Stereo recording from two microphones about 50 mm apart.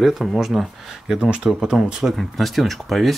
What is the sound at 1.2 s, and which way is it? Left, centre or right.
Speech, centre.